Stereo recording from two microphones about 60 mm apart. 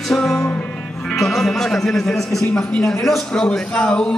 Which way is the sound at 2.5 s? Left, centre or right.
Centre.